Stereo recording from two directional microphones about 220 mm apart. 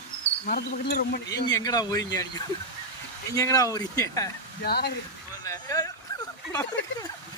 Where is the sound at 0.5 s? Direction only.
40° left (ahead or behind).